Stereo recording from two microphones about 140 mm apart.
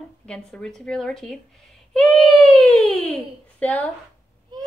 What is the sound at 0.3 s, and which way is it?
A woman's voice, 5° left (ahead or behind).